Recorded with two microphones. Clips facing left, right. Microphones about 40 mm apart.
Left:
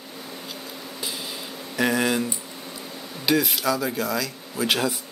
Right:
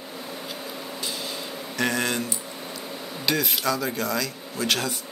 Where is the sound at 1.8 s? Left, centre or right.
Centre.